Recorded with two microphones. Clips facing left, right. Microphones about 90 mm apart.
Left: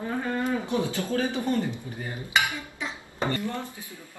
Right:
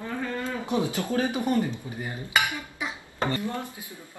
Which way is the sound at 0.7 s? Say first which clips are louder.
Right 1 dB; 20° right (ahead or behind).